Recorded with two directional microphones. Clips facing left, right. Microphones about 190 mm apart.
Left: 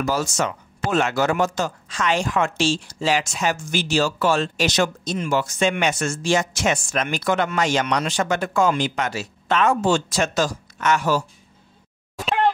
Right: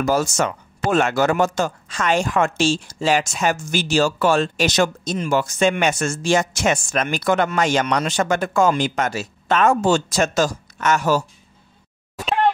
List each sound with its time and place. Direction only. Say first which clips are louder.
0.0 s a man's voice: right 3 dB; 50° right (ahead or behind)